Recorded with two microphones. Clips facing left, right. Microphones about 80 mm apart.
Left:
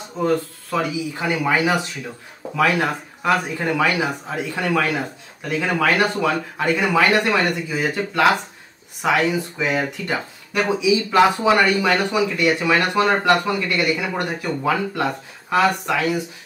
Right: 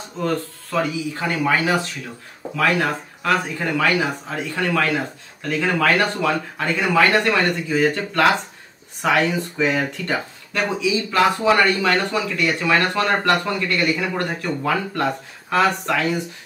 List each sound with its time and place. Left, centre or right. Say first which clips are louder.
0.2 s speech: left 3 dB; centre
3.6 s speech: right 1 dB; centre